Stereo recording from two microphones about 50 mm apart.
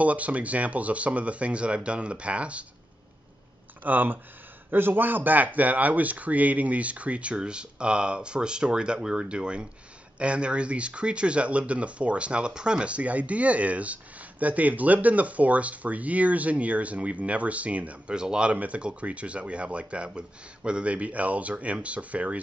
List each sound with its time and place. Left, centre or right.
0.0 s speech: right
3.8 s speech: right
18.1 s speech: centre